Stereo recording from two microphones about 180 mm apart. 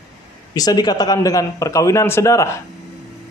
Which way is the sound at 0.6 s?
20° left (ahead or behind).